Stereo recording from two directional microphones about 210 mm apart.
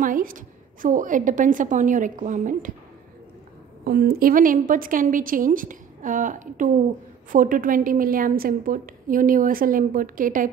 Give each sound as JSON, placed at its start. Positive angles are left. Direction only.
{"t": 0.0, "sound": "a woman's voice", "side_deg": -40}
{"t": 3.8, "sound": "a woman's voice", "side_deg": -50}